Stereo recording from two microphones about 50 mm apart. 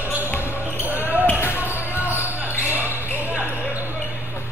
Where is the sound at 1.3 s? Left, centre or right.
Left.